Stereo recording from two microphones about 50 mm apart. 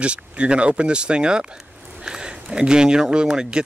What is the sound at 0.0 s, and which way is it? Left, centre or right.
Speech, right.